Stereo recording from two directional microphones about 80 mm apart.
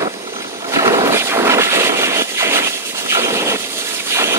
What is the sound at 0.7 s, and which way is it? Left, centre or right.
Vehicle, right.